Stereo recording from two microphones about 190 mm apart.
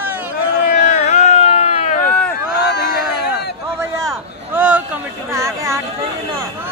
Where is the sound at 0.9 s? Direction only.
40° left (ahead or behind).